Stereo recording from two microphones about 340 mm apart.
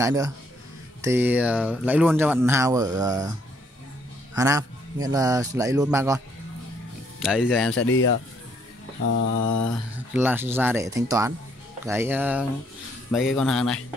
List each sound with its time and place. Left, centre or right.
0.0 s speech: centre
4.4 s speech: centre
7.7 s speech: left
9.4 s mantra: left
10.1 s speech: centre